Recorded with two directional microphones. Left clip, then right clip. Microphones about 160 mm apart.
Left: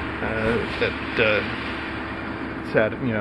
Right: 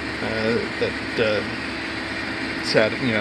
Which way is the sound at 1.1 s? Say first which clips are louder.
Left 2 dB; 25° right (ahead or behind).